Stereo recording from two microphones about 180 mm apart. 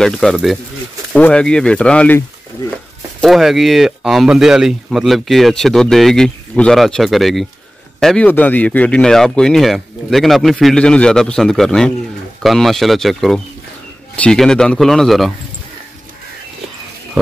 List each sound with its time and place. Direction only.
0.0 s speech: centre (ahead or behind)